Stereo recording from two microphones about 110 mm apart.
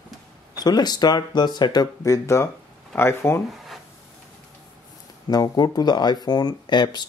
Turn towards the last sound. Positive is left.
turn(degrees=40)  # may be behind; listen again after turning